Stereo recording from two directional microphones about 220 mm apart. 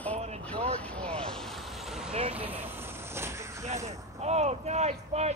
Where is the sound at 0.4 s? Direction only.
5° left (ahead or behind); by 3.6 s 10° right (ahead or behind).